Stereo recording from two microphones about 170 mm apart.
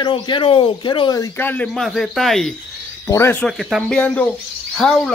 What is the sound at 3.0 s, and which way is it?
Speech, 15° left (ahead or behind).